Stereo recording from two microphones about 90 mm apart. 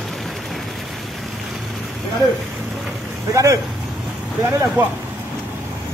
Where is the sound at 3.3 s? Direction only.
35° right (ahead or behind).